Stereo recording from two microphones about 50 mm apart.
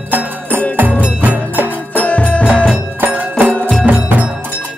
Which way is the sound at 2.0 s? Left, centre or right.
Left.